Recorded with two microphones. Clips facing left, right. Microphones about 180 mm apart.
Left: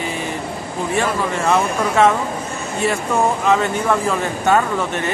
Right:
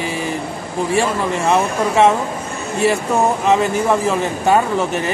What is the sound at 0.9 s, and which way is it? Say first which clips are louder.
Speech: right 2 dB; 30° right (ahead or behind).